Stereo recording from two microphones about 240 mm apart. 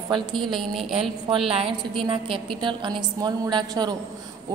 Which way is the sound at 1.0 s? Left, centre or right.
Right.